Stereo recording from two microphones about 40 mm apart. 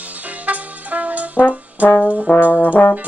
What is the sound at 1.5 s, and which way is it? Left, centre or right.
Brass instrument, right.